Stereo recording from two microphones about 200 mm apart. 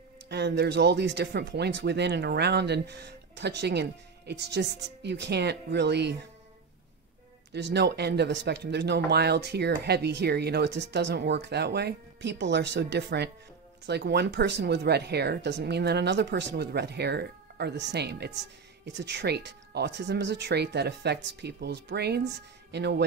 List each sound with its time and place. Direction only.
0.3 s speech: 55° right (ahead or behind)
7.5 s speech: 60° right (ahead or behind)